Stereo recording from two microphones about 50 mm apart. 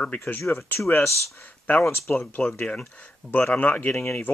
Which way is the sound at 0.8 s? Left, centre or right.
Left.